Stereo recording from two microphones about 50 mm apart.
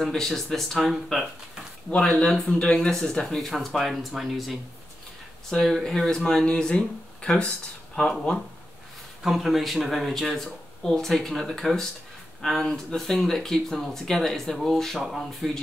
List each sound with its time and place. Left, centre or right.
0.0 s speech: centre
1.9 s speech: centre
5.5 s speech: centre
9.2 s speech: centre